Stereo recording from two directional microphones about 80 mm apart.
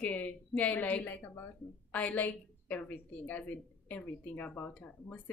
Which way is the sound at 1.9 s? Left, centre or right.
Centre.